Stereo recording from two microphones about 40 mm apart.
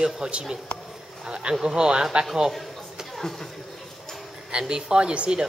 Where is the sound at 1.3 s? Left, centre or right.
Right.